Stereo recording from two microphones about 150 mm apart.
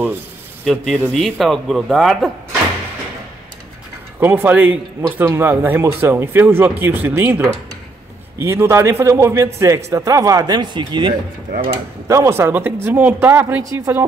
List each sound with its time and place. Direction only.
0.7 s speech: 5° left (ahead or behind)
4.2 s speech: 15° right (ahead or behind); by 11.1 s 30° right (ahead or behind)
12.1 s speech: 20° right (ahead or behind)